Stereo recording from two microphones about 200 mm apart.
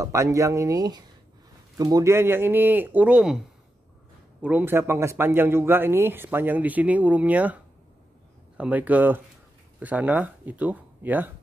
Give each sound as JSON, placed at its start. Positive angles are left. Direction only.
{"t": 0.0, "sound": "speech", "side_deg": -15}
{"t": 4.4, "sound": "speech", "side_deg": -10}